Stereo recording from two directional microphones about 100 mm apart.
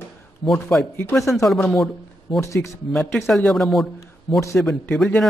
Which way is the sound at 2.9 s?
Centre (ahead or behind).